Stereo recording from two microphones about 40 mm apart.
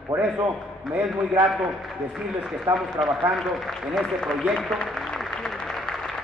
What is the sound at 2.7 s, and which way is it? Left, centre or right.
Speech, right.